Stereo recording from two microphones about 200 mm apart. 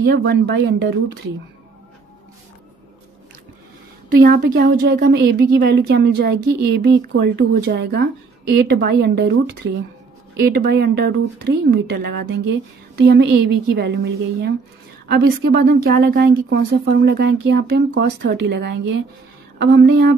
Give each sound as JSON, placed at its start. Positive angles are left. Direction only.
{"t": 0.1, "sound": "a woman's voice", "side_deg": -55}
{"t": 4.1, "sound": "a woman's voice", "side_deg": -50}